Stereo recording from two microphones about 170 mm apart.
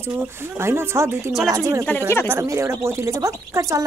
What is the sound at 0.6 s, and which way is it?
A woman's voice, 15° right (ahead or behind).